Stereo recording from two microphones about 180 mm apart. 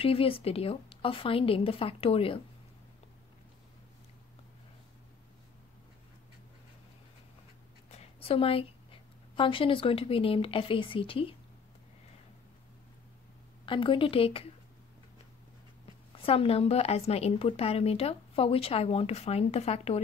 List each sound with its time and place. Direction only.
0.0 s a woman's voice: 30° left (ahead or behind)
7.9 s a sound: 35° left (ahead or behind)
9.3 s speech: 30° left (ahead or behind)
13.7 s a woman's voice: 30° left (ahead or behind)
16.2 s a woman's voice: 30° left (ahead or behind)